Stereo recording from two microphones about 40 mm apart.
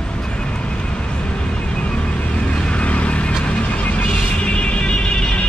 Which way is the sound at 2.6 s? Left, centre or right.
Left.